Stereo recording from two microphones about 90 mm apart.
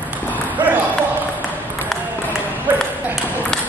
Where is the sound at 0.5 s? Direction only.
20° right (ahead or behind).